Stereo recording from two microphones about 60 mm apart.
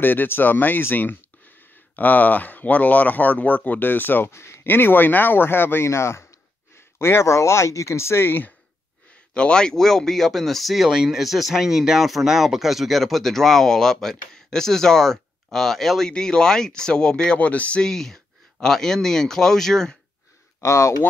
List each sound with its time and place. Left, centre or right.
0.0 s speech: left
4.3 s a sound: left
4.6 s speech: left
9.3 s speech: centre
17.4 s speech: left
17.8 s speech: centre
20.6 s speech: left